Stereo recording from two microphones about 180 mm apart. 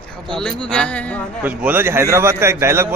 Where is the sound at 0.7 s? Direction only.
5° left (ahead or behind).